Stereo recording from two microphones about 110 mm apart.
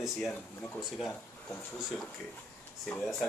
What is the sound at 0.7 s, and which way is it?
Speech, 5° right (ahead or behind).